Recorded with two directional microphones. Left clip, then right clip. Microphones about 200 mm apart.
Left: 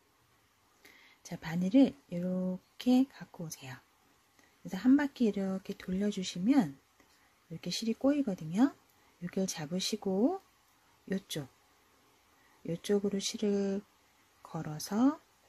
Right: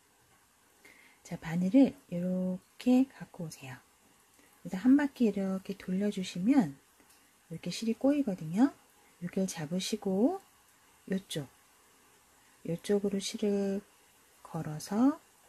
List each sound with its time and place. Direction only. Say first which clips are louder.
1.2 s speech: right 1 dB; 5° left (ahead or behind)
12.6 s speech: right 1 dB; 5° left (ahead or behind)